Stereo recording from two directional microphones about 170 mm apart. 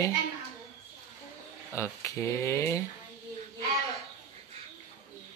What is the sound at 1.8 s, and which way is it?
Speech, 15° left (ahead or behind).